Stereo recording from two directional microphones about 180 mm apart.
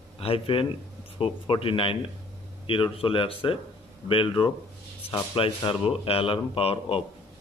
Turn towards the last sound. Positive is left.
turn(degrees=30)  # may be behind; listen again after turning